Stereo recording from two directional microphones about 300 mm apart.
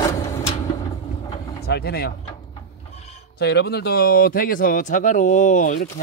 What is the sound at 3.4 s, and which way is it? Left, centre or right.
Speech, left.